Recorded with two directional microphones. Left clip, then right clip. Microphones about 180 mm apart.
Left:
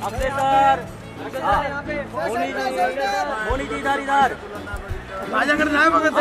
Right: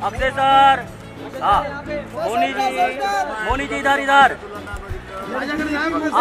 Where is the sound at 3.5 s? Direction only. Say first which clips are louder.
Right 4 dB; 25° right (ahead or behind).